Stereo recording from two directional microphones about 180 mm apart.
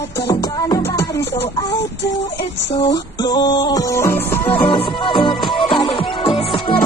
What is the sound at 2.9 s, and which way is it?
Music, 25° left (ahead or behind).